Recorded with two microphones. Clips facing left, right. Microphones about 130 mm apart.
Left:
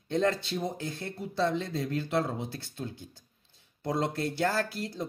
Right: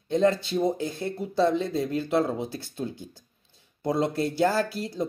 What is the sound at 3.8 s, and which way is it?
Speech, 5° right (ahead or behind).